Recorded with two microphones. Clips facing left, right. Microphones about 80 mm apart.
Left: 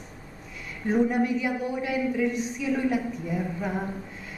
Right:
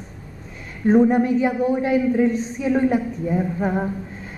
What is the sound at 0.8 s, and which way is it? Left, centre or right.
A man's voice, right.